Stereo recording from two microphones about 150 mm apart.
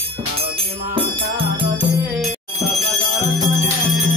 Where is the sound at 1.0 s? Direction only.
35° right (ahead or behind).